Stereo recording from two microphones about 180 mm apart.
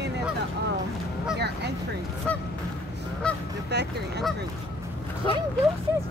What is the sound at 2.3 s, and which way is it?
Honk, 10° left (ahead or behind).